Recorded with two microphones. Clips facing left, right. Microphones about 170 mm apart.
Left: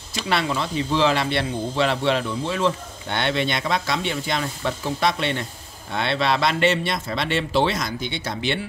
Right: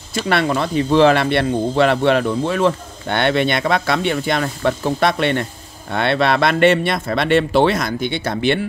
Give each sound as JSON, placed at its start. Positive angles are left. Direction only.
{"t": 0.1, "sound": "speech", "side_deg": -55}